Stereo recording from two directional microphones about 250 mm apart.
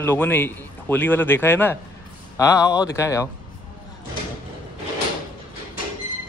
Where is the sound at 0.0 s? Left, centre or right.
Centre.